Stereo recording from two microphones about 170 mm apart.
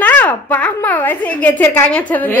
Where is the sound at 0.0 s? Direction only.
10° left (ahead or behind).